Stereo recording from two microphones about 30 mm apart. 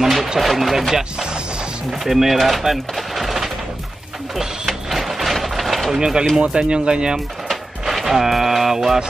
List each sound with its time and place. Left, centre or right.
0.0 s speech: centre
4.6 s a sound: centre
5.9 s speech: right
7.8 s speech: centre